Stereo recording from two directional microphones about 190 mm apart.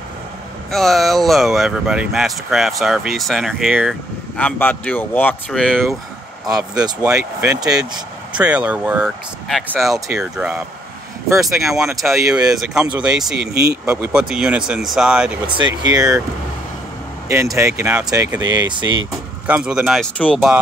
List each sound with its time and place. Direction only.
0.7 s speech: centre (ahead or behind)
4.4 s speech: 10° left (ahead or behind)
6.4 s speech: 20° right (ahead or behind)
6.8 s speech: 5° right (ahead or behind)
7.7 s speech: 20° right (ahead or behind)
8.4 s speech: 5° right (ahead or behind)
15.5 s speech: 20° right (ahead or behind)
17.3 s speech: 15° right (ahead or behind); by 20.5 s 5° left (ahead or behind)